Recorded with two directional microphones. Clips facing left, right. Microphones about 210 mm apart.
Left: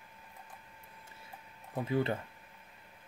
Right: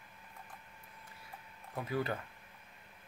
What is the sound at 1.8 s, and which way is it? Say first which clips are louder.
Speech: left 4 dB; 25° left (ahead or behind).